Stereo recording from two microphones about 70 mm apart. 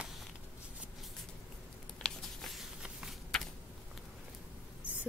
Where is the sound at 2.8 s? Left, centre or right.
Centre.